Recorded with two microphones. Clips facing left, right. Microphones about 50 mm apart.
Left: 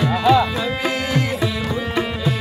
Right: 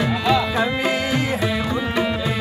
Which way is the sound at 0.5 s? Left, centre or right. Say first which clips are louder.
Right 2 dB; right.